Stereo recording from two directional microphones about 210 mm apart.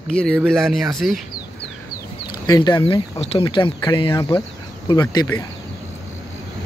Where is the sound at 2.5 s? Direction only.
20° left (ahead or behind).